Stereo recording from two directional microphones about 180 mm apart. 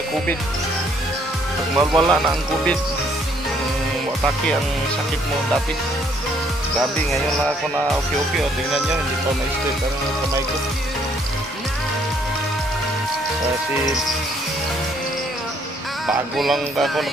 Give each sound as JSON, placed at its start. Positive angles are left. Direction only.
{"t": 1.8, "sound": "speech", "side_deg": -25}
{"t": 16.1, "sound": "music", "side_deg": 0}